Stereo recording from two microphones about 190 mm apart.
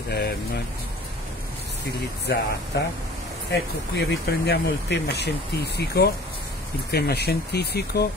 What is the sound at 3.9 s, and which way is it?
Speech, 60° left (ahead or behind).